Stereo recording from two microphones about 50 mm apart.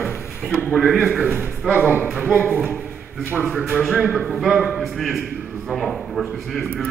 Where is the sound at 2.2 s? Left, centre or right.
Right.